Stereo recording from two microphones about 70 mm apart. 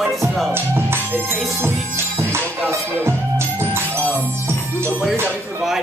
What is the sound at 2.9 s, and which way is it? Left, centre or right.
Music, right.